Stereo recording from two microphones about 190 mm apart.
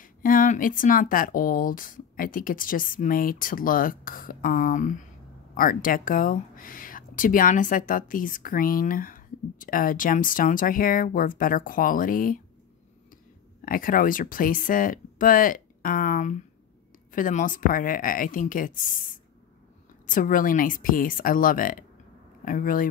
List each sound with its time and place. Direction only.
0.0 s speech: 45° left (ahead or behind)
13.7 s speech: 45° left (ahead or behind)